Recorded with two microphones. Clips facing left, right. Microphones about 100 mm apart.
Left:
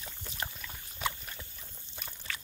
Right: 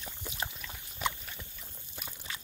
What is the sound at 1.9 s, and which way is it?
Pour, 10° right (ahead or behind).